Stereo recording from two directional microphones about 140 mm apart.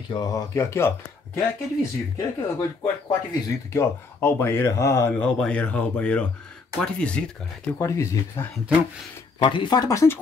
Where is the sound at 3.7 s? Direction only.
20° left (ahead or behind).